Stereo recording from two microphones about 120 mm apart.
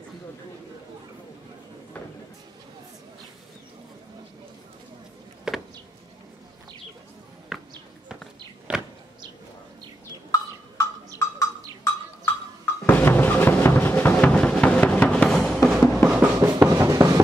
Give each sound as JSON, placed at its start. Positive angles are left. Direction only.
{"t": 5.5, "sound": "a sound", "side_deg": -5}
{"t": 7.5, "sound": "basketball bounce", "side_deg": -5}
{"t": 8.7, "sound": "power windows", "side_deg": -10}
{"t": 11.1, "sound": "bird", "side_deg": 25}
{"t": 12.8, "sound": "music", "side_deg": 15}
{"t": 15.8, "sound": "a sound", "side_deg": 0}
{"t": 16.1, "sound": "drum", "side_deg": -15}